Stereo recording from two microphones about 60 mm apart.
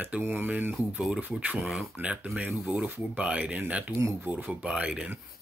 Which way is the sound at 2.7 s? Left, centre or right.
Right.